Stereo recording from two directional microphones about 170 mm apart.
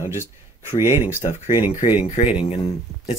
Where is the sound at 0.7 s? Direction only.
15° right (ahead or behind).